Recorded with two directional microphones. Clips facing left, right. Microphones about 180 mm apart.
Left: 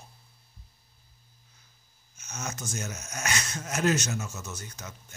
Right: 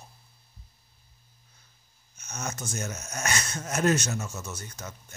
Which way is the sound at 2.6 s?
50° right (ahead or behind).